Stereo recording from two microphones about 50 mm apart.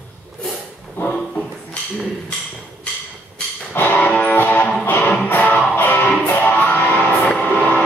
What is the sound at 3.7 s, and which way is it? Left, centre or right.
Music, left.